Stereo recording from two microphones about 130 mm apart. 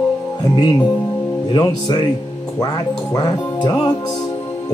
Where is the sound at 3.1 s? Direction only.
30° left (ahead or behind).